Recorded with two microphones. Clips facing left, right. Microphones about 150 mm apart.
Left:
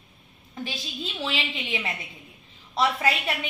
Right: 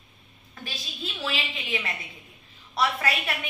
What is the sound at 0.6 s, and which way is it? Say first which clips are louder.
A woman's voice: left 4 dB; 25° left (ahead or behind).